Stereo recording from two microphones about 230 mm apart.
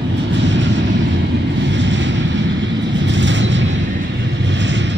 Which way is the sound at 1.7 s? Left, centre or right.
Right.